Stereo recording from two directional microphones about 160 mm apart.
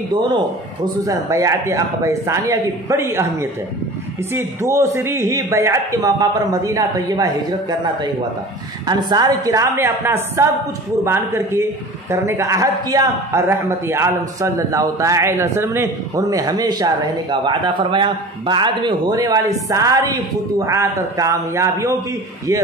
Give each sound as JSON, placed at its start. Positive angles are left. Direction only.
{"t": 1.0, "sound": "a man's voice", "side_deg": -20}
{"t": 8.8, "sound": "a man's voice", "side_deg": -25}